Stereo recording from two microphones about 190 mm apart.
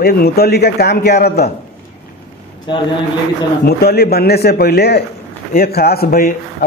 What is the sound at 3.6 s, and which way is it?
A man's voice, 55° left (ahead or behind).